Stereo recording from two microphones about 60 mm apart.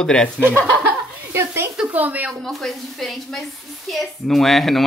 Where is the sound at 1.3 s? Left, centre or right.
Right.